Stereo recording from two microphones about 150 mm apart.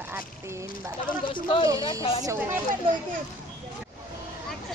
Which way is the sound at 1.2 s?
35° left (ahead or behind).